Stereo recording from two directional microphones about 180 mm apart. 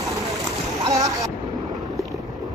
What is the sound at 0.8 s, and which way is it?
Speech, 20° right (ahead or behind).